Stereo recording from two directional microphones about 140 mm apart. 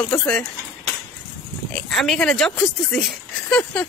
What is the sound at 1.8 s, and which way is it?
Speech, centre (ahead or behind).